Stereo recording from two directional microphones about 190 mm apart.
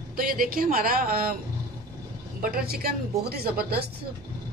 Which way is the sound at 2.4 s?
55° right (ahead or behind).